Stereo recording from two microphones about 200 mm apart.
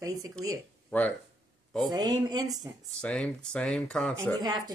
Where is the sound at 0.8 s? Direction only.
5° left (ahead or behind).